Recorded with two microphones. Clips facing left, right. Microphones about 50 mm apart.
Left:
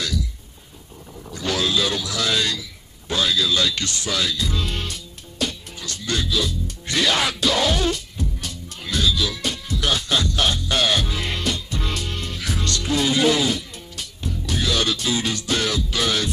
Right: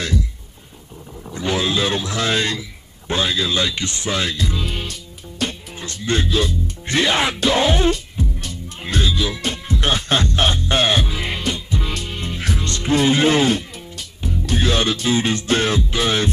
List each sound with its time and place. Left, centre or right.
0.0 s a sound: right
1.3 s wild animals: right
3.1 s speech: right
4.6 s music: centre
5.4 s music: right
11.1 s music: centre